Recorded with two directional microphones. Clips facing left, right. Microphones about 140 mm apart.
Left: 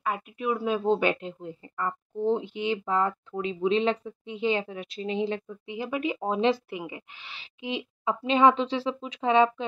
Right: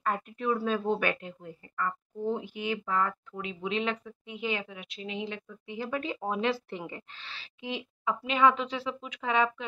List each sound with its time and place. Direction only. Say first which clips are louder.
0.0 s speech: left 1 dB; 10° left (ahead or behind); by 5.4 s 35° left (ahead or behind)
5.7 s speech: left 4 dB; 15° left (ahead or behind)
6.7 s speech: left 3 dB; 10° left (ahead or behind); by 9.7 s 25° left (ahead or behind)